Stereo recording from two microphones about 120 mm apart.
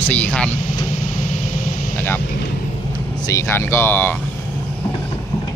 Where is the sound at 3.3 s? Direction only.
20° left (ahead or behind).